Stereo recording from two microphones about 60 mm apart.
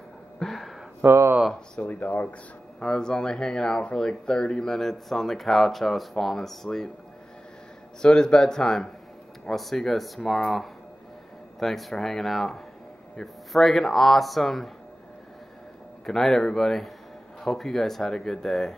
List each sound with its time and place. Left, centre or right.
0.4 s a sound: centre
1.0 s speech: right
1.8 s speech: left
2.8 s speech: centre
8.0 s speech: centre
16.1 s speech: centre